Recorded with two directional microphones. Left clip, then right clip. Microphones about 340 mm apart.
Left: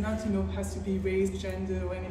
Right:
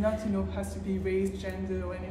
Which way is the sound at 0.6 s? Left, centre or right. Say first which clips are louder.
Left 1 dB; centre.